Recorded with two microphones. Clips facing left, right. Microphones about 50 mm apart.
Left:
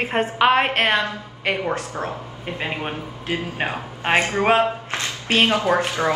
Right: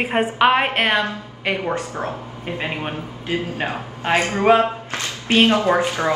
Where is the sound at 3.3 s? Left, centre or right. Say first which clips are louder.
Right 2 dB; left.